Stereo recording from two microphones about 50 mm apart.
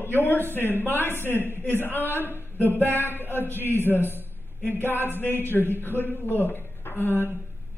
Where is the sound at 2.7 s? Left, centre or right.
Right.